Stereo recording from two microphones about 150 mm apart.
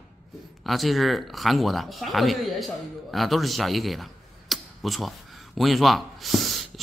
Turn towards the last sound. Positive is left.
turn(degrees=0)  # may be behind; listen again after turning